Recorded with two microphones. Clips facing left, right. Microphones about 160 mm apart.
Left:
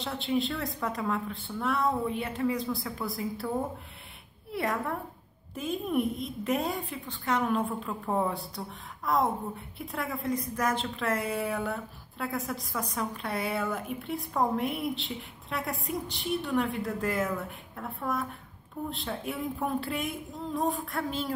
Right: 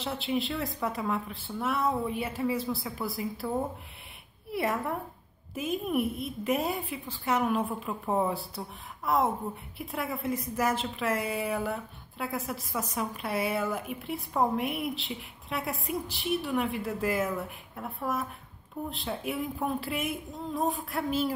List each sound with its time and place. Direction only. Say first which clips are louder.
0.0 s a woman's voice: left 1 dB; centre (ahead or behind)